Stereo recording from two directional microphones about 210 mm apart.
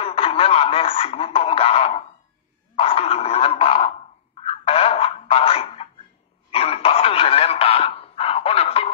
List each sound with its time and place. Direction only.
0.0 s speech: 25° left (ahead or behind)
2.7 s dog: 30° left (ahead or behind)
4.4 s a sound: 30° left (ahead or behind)